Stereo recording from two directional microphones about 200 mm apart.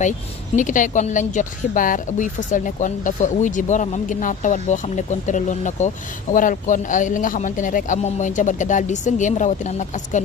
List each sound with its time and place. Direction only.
0.6 s speech: 40° left (ahead or behind)